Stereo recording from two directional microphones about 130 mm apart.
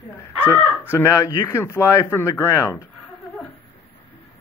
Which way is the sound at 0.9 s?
25° left (ahead or behind).